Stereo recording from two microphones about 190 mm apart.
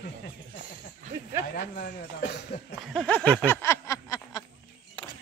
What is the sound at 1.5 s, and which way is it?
Speech, 55° left (ahead or behind).